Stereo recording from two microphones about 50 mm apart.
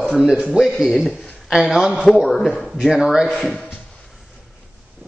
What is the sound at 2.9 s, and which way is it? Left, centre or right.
Speech, centre.